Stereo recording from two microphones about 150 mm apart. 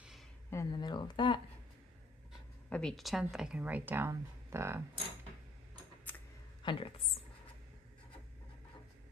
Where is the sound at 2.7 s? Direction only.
5° left (ahead or behind); by 4.8 s 15° right (ahead or behind).